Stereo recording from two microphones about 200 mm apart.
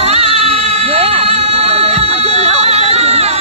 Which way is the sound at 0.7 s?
30° right (ahead or behind).